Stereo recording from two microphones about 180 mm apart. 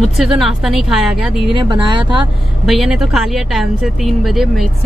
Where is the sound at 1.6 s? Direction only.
25° right (ahead or behind).